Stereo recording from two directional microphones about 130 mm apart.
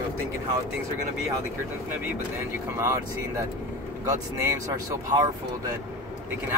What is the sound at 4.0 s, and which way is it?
Speech, 25° right (ahead or behind).